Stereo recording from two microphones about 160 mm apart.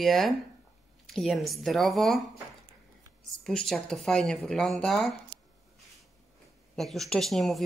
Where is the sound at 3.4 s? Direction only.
Centre (ahead or behind).